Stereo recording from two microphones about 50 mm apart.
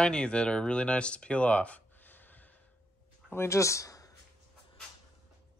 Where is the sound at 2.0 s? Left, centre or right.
Left.